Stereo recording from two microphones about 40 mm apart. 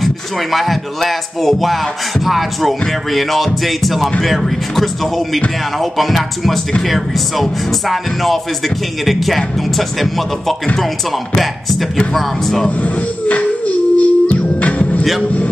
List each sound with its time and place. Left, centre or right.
0.0 s music: centre
7.9 s music: centre
12.1 s speech: centre
12.6 s music: left